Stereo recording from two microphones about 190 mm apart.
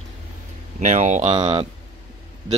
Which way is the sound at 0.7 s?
40° right (ahead or behind).